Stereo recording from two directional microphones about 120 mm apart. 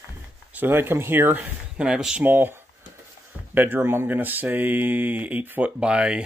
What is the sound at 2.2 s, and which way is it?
Speech, 15° right (ahead or behind).